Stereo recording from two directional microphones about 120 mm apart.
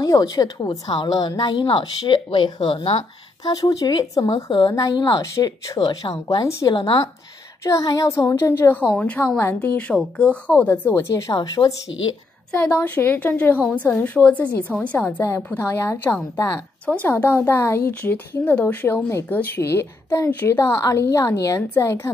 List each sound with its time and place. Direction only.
0.0 s a woman's voice: 30° left (ahead or behind); by 3.1 s 55° left (ahead or behind)
3.4 s a woman's voice: 30° left (ahead or behind)
5.2 s a woman's voice: 30° left (ahead or behind)
6.7 s speech: 45° left (ahead or behind)
7.6 s a woman's voice: 30° left (ahead or behind)
11.3 s a woman's voice: 35° left (ahead or behind)
12.5 s a woman's voice: 15° left (ahead or behind)
16.5 s a woman's voice: 10° left (ahead or behind)